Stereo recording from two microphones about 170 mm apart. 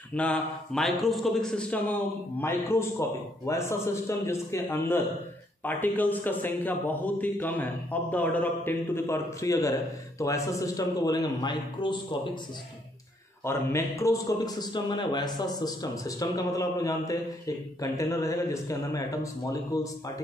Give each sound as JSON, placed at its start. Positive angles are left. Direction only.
{"t": 0.1, "sound": "a man's voice", "side_deg": 5}
{"t": 13.4, "sound": "a man's voice", "side_deg": 15}